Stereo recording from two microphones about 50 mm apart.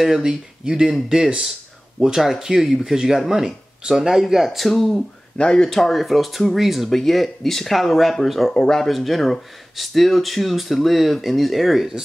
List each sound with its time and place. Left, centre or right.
0.0 s speech: centre
5.4 s speech: centre
5.7 s speech: centre